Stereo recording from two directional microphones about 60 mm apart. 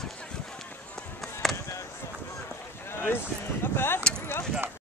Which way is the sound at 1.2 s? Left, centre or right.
Centre.